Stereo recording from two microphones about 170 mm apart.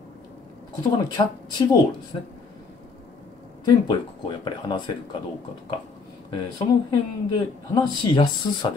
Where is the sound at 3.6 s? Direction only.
25° left (ahead or behind).